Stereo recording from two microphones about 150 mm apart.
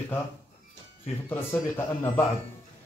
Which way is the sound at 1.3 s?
15° left (ahead or behind).